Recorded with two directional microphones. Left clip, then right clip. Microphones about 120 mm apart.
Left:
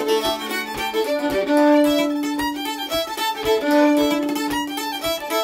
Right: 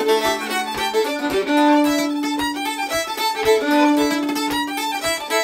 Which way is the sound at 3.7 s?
15° left (ahead or behind).